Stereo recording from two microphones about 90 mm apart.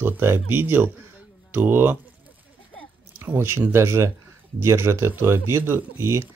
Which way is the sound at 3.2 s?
25° right (ahead or behind).